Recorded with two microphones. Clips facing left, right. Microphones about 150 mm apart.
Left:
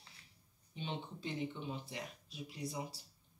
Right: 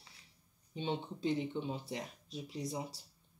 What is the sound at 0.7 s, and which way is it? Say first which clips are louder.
Speech: right 6 dB; 35° right (ahead or behind).